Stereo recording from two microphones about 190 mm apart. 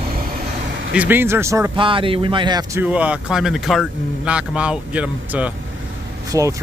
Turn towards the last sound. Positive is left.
turn(degrees=-20)  # may be behind; listen again after turning